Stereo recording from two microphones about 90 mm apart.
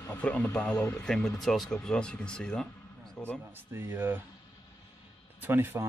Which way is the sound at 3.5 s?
25° right (ahead or behind).